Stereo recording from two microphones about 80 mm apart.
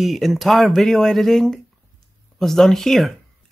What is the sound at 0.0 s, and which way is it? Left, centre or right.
Speech, centre.